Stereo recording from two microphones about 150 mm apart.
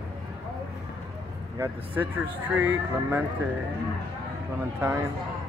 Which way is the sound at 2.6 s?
15° right (ahead or behind).